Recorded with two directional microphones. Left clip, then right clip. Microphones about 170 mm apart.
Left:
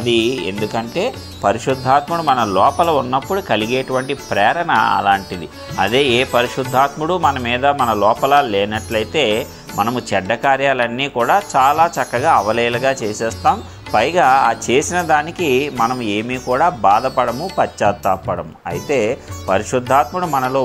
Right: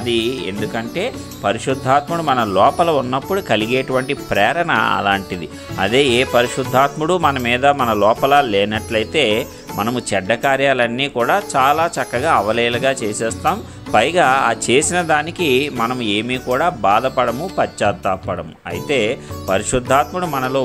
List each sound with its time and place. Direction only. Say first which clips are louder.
0.0 s speech: left 3 dB; centre (ahead or behind)
1.7 s speech: right 1 dB; 25° right (ahead or behind)